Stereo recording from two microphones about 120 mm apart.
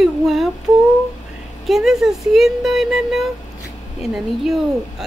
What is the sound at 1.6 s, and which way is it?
A woman's voice, centre (ahead or behind).